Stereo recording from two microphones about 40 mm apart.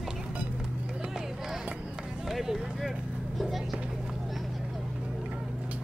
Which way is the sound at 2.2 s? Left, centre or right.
Centre.